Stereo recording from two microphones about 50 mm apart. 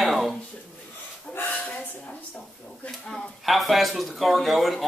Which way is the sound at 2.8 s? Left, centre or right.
Centre.